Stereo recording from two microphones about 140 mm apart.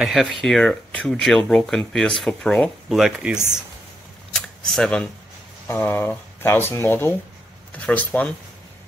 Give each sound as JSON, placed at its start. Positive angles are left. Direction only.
{"t": 0.0, "sound": "speech", "side_deg": 0}
{"t": 3.0, "sound": "speech", "side_deg": -5}
{"t": 4.3, "sound": "camera", "side_deg": 5}
{"t": 5.7, "sound": "speech", "side_deg": 15}